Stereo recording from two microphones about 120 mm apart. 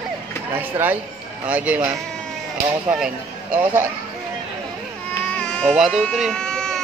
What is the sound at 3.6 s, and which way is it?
Speech, 20° right (ahead or behind).